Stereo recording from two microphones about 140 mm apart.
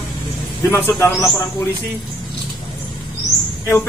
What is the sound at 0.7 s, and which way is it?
Speech, 15° left (ahead or behind).